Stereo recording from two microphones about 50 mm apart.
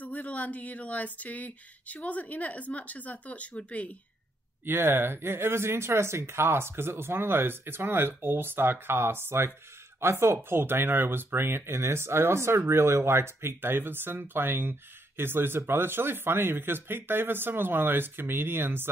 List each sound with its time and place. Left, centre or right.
0.0 s speech: left
4.6 s speech: right